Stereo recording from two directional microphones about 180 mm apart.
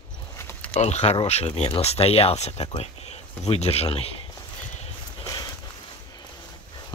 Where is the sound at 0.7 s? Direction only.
40° left (ahead or behind).